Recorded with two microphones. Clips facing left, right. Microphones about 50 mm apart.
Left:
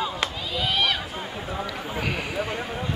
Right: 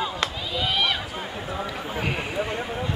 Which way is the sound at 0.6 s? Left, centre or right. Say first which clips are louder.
Even; centre.